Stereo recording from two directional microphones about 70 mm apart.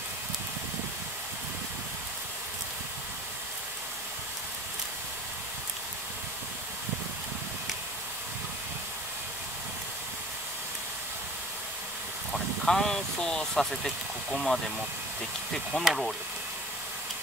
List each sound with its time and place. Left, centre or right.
12.6 s speech: centre
15.7 s speech: centre